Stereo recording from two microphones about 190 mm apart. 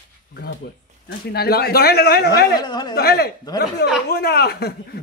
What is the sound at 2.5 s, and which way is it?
Speech, 20° left (ahead or behind).